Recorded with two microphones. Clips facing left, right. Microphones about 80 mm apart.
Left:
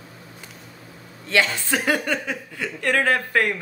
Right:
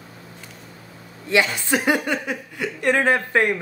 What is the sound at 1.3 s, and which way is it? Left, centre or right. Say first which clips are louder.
Speech: right 2 dB; centre.